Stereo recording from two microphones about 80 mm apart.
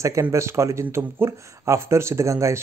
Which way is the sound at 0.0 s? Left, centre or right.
Right.